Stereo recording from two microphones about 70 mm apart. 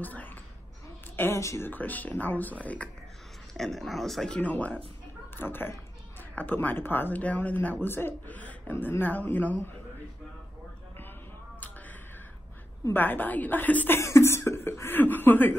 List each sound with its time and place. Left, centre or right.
0.0 s a sound: left
1.1 s a woman's voice: left
1.4 s speech: left
1.7 s speech: left
3.5 s speech: centre
4.4 s speech: left
12.9 s speech: left
13.9 s speech: left